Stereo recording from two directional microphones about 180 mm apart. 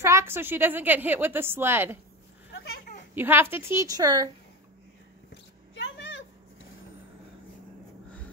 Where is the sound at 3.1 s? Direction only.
10° right (ahead or behind).